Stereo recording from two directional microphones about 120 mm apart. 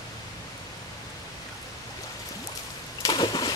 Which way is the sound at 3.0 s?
40° left (ahead or behind).